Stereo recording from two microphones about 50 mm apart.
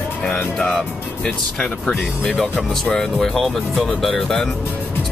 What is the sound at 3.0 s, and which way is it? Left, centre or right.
Speech, centre.